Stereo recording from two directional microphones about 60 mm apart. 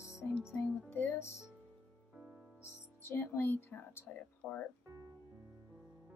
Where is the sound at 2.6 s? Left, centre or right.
Left.